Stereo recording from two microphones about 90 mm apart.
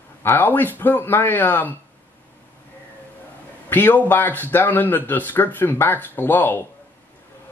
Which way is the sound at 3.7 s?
20° left (ahead or behind).